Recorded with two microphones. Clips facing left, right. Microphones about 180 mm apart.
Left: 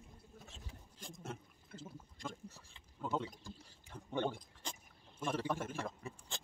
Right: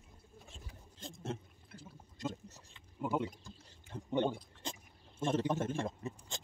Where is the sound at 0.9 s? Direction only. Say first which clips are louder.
Right 6 dB; 25° right (ahead or behind).